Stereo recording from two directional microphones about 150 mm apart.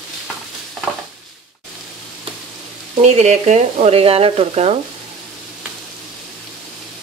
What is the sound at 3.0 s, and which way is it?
Frying, 50° right (ahead or behind).